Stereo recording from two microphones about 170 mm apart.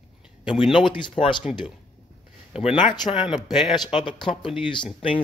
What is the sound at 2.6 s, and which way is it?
Speech, 25° left (ahead or behind).